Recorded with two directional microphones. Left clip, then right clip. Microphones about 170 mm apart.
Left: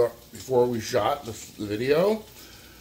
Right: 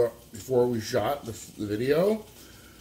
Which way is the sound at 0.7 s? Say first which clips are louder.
Left 3 dB; 20° right (ahead or behind).